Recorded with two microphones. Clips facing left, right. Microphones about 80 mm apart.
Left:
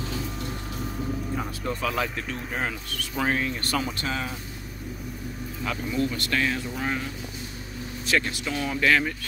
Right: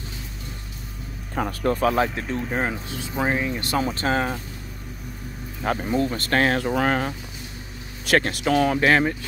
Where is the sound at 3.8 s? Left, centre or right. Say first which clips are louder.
Right 6 dB; right.